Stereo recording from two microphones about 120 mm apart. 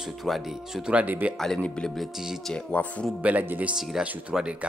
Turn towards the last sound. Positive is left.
turn(degrees=-10)  # may be behind; listen again after turning